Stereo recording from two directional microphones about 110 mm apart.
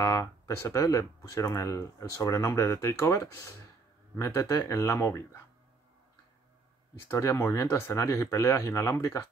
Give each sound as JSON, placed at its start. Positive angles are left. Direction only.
{"t": 0.0, "sound": "speech", "side_deg": 30}
{"t": 7.1, "sound": "speech", "side_deg": 25}